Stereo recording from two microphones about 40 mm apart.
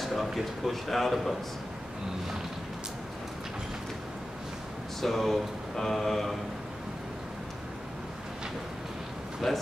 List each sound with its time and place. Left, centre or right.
0.0 s a man's voice: centre
5.0 s a man's voice: centre
9.4 s a man's voice: centre